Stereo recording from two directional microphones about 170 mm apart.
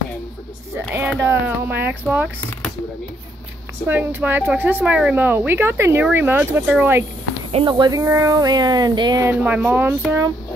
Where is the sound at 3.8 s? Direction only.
10° right (ahead or behind).